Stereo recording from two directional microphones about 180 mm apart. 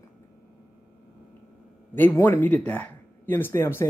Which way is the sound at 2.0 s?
10° left (ahead or behind).